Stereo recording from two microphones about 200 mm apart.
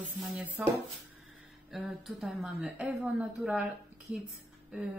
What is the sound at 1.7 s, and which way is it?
Speech, centre (ahead or behind).